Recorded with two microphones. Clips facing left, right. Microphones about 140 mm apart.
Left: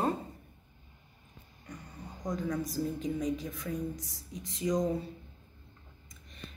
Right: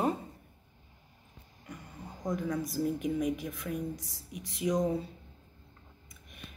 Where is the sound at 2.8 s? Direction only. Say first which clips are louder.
Right 4 dB; 10° right (ahead or behind).